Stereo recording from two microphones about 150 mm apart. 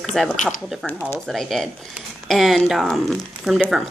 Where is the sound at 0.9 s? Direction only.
15° left (ahead or behind).